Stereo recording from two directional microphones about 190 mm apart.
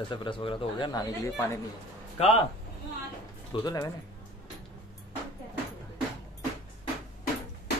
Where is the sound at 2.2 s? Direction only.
35° left (ahead or behind).